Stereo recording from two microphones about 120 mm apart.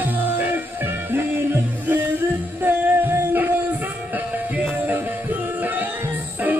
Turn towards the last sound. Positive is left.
turn(degrees=-15)  # may be behind; listen again after turning